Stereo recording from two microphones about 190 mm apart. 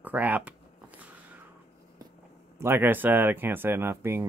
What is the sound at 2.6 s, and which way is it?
Speech, 10° right (ahead or behind).